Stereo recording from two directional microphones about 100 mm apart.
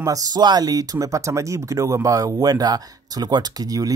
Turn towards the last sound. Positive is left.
turn(degrees=-40)  # may be behind; listen again after turning